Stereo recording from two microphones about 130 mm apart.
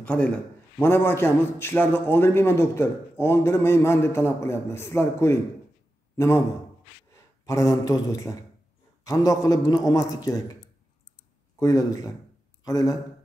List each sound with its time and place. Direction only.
0.0 s a man's voice: 10° left (ahead or behind); by 10.6 s 25° left (ahead or behind)
11.6 s a man's voice: 25° left (ahead or behind)